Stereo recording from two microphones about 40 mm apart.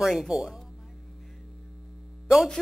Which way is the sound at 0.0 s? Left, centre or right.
Centre.